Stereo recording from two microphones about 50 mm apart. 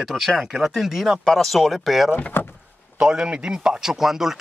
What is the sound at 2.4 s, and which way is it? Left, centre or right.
Speech, left.